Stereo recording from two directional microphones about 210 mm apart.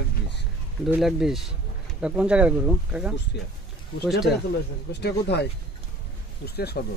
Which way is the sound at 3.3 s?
55° left (ahead or behind).